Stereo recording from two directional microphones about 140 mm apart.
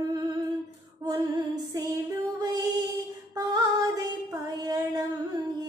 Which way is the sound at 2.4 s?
30° right (ahead or behind).